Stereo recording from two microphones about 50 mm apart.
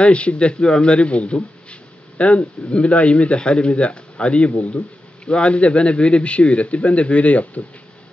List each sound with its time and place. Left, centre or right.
0.0 s a man's voice: left